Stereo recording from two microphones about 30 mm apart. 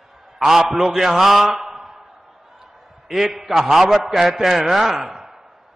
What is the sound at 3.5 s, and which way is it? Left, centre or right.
A man's voice, centre.